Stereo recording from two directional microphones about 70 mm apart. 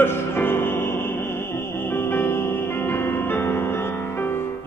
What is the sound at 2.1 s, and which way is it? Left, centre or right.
Music, left.